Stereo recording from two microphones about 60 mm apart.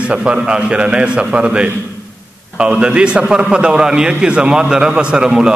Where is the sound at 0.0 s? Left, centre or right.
Centre.